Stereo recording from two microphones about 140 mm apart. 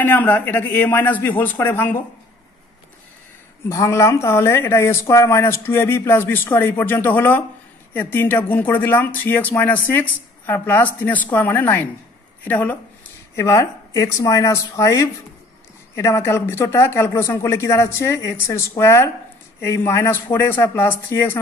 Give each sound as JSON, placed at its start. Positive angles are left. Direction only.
{"t": 0.0, "sound": "speech", "side_deg": 15}
{"t": 3.6, "sound": "speech", "side_deg": 20}